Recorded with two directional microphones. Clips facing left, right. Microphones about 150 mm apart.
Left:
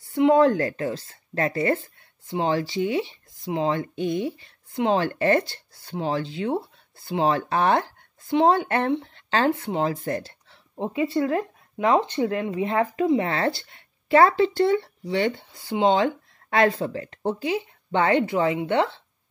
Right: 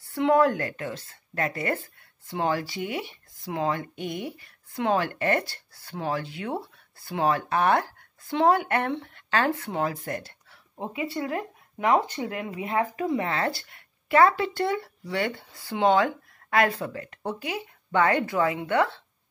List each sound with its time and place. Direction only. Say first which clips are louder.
0.1 s speech: left 4 dB; 20° left (ahead or behind)
0.5 s speech: left 6 dB; 30° left (ahead or behind)